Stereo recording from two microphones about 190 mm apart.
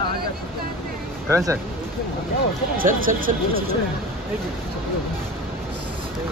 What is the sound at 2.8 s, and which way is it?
Speech, 45° right (ahead or behind).